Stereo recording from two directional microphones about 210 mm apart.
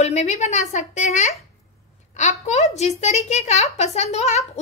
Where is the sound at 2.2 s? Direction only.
35° left (ahead or behind).